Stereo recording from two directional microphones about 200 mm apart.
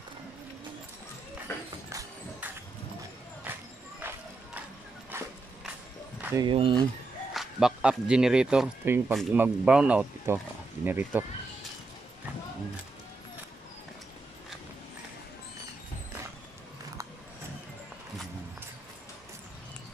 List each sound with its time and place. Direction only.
1.9 s music: 15° right (ahead or behind)
5.1 s a sound: 10° right (ahead or behind)
6.2 s speech: 20° right (ahead or behind)
7.3 s speech: centre (ahead or behind)